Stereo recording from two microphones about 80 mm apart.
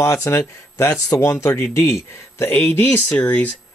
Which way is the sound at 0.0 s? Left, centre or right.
Left.